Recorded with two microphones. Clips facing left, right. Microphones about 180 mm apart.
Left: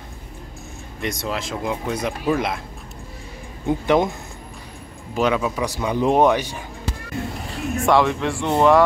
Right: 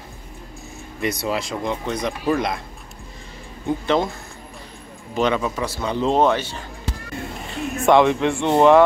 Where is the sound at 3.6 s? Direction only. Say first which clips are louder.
Left 2 dB; 15° left (ahead or behind).